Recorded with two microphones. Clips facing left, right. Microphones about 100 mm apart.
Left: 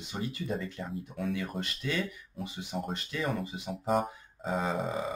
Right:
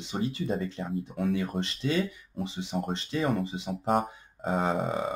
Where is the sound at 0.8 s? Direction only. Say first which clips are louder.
Right 4 dB; 40° right (ahead or behind).